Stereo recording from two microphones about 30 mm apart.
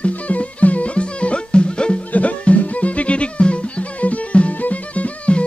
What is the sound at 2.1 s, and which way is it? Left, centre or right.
Music, left.